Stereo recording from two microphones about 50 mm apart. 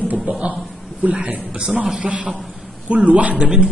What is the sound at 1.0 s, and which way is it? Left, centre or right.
A woman's voice, right.